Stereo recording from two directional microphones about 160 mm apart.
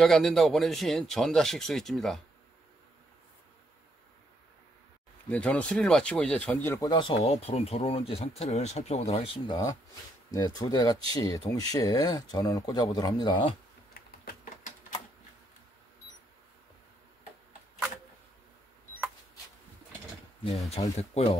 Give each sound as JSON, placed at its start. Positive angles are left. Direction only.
{"t": 0.0, "sound": "speech", "side_deg": 0}
{"t": 5.3, "sound": "speech", "side_deg": 5}
{"t": 6.9, "sound": "speech", "side_deg": 30}
{"t": 10.3, "sound": "speech", "side_deg": 25}
{"t": 13.9, "sound": "a sound", "side_deg": 70}
{"t": 20.8, "sound": "speech", "side_deg": 35}